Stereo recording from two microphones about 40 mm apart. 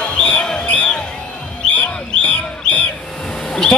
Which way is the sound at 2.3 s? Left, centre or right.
Left.